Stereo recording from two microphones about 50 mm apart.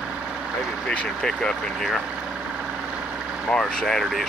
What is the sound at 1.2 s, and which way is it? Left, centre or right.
Speech, centre.